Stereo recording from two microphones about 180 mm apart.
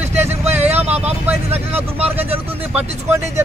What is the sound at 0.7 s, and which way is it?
Speech, 35° right (ahead or behind).